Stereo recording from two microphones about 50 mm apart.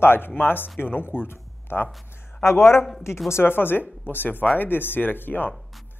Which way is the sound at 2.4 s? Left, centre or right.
Left.